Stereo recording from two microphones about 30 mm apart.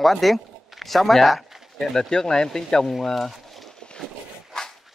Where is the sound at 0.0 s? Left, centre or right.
Centre.